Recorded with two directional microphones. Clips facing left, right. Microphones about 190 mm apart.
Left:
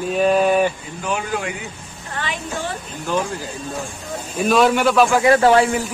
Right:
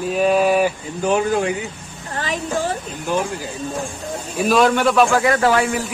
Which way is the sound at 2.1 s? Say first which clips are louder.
Right 4 dB; 40° right (ahead or behind).